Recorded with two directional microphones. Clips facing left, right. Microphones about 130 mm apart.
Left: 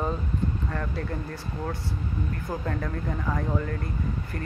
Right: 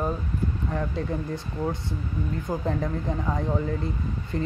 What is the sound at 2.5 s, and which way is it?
Speech, 20° right (ahead or behind).